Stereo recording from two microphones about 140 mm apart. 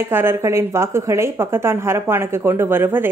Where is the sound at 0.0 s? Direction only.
15° right (ahead or behind).